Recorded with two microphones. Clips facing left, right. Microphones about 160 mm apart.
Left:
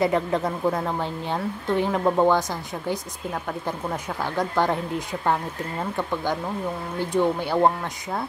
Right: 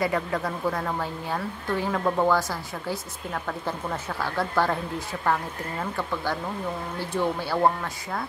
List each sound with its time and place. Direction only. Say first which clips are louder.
0.0 s speech: left 4 dB; 20° left (ahead or behind)
3.4 s speech: left 1 dB; 15° left (ahead or behind)